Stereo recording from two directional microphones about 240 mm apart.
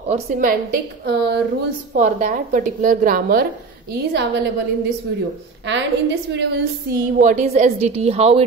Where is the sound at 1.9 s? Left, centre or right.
Right.